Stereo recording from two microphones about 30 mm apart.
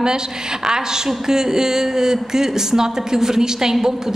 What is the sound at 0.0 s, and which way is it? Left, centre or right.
A man's voice, right.